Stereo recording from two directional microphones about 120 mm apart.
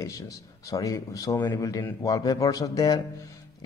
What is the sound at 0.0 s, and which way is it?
Speech, 25° left (ahead or behind).